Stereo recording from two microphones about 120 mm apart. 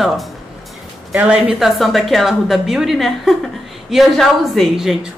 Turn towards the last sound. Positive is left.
turn(degrees=-5)  # may be behind; listen again after turning